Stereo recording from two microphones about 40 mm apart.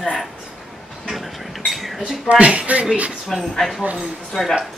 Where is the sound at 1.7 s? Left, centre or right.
Centre.